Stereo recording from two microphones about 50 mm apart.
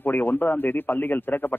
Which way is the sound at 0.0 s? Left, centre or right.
Left.